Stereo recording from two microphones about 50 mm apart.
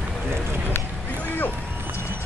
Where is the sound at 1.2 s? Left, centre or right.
Left.